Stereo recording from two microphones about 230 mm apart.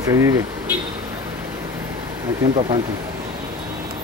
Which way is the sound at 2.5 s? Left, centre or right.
Right.